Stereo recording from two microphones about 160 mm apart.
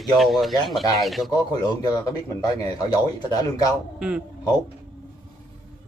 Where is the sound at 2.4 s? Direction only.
25° left (ahead or behind).